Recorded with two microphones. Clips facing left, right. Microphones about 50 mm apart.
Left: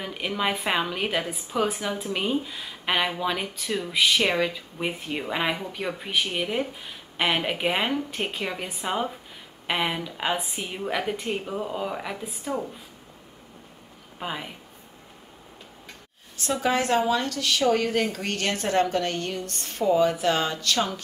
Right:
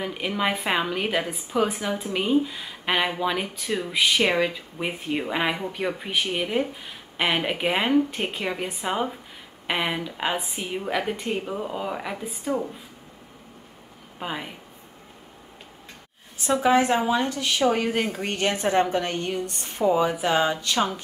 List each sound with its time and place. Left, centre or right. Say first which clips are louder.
0.0 s a woman's voice: right 2 dB; centre
14.2 s a woman's voice: right 1 dB; centre
16.3 s speech: right 5 dB; centre